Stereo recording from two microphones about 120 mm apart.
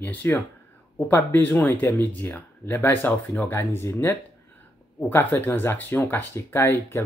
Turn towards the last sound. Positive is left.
turn(degrees=20)  # may be behind; listen again after turning